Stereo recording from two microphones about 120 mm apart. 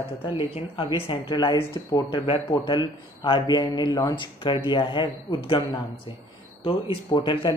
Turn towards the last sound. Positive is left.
turn(degrees=40)  # may be behind; listen again after turning